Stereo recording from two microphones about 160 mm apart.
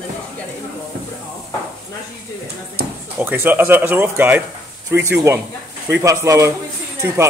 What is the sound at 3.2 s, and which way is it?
Speech, 10° right (ahead or behind).